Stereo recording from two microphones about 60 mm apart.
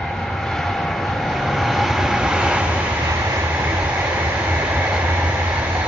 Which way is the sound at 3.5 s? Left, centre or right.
Right.